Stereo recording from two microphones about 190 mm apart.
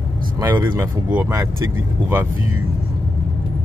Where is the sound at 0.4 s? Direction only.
20° right (ahead or behind).